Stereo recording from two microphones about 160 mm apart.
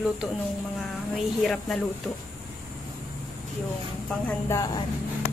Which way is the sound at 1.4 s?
Centre (ahead or behind).